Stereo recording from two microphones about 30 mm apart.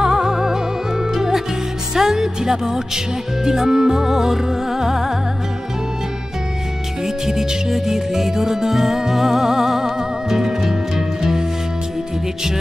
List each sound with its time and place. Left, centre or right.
0.0 s music: centre
2.0 s music: centre
7.2 s music: centre